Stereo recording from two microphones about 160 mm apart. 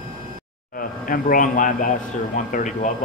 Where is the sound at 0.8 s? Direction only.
60° left (ahead or behind).